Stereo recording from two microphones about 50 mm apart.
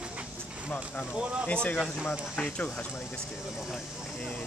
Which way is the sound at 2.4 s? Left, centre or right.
Left.